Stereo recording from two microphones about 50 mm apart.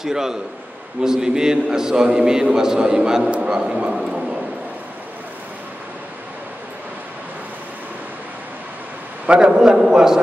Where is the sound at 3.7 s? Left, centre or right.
Right.